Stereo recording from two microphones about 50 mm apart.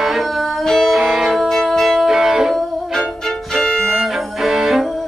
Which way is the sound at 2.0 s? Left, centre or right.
Centre.